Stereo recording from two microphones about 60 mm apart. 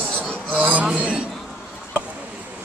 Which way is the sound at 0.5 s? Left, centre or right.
Right.